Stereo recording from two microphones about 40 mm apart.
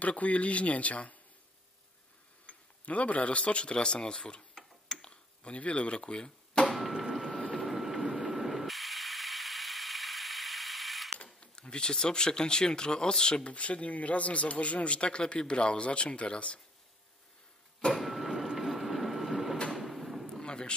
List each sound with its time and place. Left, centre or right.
0.0 s speech: left
2.4 s speech: left
5.0 s a sound: left
6.7 s a sound: centre
7.5 s ratchet: centre
11.3 s speech: left
13.5 s speech: left
17.9 s printer: centre
19.7 s sliding door: centre
20.2 s a sound: centre